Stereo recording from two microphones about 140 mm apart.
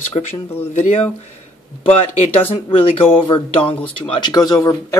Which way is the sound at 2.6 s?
40° left (ahead or behind).